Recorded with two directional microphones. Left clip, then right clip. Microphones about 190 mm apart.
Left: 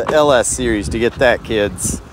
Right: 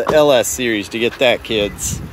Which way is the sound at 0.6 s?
55° left (ahead or behind).